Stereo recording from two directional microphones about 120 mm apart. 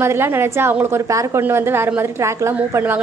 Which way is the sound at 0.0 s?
20° right (ahead or behind).